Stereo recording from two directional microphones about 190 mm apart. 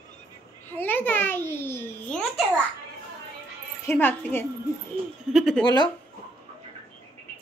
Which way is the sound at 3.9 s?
10° left (ahead or behind).